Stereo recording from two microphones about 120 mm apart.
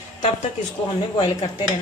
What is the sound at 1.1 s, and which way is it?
Speech, 45° left (ahead or behind).